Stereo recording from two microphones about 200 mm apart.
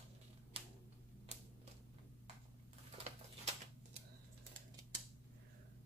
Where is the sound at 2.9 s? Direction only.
35° right (ahead or behind).